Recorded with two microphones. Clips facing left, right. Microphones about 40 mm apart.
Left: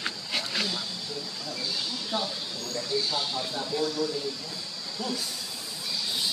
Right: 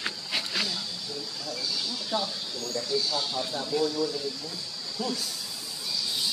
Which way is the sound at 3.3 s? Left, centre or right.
Centre.